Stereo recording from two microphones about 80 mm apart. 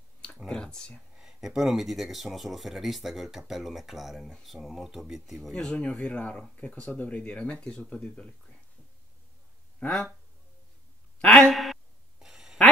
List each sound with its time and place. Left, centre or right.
0.5 s clicking: centre
1.1 s speech: centre
5.5 s speech: centre
9.8 s speech: centre
11.1 s a sound: centre
11.5 s a sound: centre